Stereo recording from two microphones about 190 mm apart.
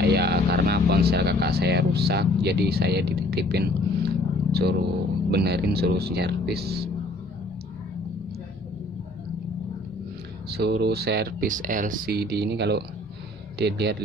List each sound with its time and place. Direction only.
0.0 s vehicle: 60° right (ahead or behind)
1.1 s speech: 60° right (ahead or behind)
10.5 s speech: 60° right (ahead or behind)